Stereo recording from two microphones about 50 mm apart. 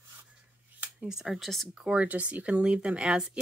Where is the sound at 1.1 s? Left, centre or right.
Centre.